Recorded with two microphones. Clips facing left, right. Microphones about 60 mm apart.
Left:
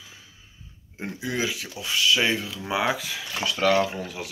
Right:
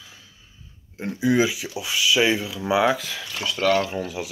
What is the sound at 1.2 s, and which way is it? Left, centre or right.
Speech, centre.